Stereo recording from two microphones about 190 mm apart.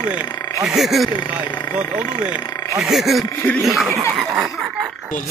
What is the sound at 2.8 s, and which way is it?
Speech, centre (ahead or behind).